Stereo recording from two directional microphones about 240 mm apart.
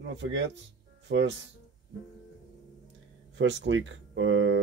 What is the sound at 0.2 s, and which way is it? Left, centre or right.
Speech, right.